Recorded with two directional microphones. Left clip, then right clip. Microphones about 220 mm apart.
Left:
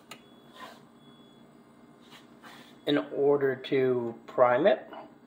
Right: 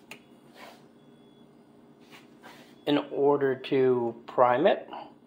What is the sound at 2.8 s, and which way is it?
Speech, 5° right (ahead or behind).